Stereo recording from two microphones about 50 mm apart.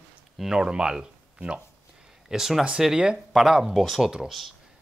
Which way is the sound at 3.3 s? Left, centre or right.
Centre.